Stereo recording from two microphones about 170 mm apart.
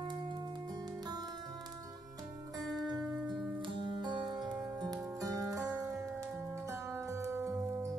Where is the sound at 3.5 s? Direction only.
30° right (ahead or behind).